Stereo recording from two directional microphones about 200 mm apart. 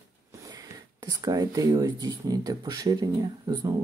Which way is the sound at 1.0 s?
20° right (ahead or behind).